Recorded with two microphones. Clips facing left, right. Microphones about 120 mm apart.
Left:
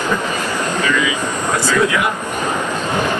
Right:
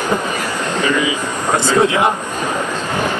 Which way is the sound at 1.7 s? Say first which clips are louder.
Right 3 dB; 25° right (ahead or behind).